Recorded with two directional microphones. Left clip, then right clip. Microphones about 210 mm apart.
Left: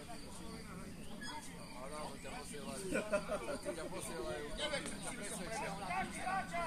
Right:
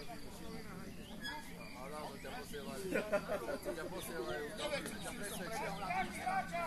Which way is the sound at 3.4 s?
35° left (ahead or behind).